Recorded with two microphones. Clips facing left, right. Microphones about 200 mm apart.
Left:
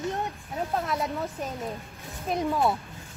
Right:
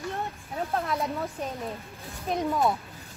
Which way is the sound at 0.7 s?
Centre (ahead or behind).